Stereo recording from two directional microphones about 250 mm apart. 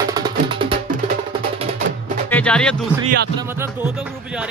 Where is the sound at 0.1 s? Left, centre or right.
Centre.